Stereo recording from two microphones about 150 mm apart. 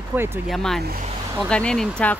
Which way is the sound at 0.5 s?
Centre (ahead or behind).